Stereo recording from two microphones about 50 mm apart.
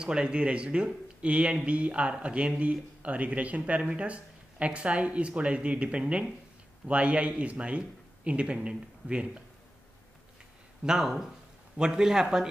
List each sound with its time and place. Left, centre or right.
0.0 s speech: centre
10.8 s a man's voice: centre